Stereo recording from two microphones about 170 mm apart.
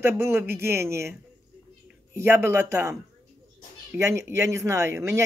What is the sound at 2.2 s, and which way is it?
Speech, 15° right (ahead or behind).